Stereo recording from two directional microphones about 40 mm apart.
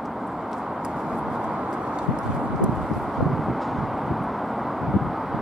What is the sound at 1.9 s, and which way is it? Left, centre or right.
Horse, right.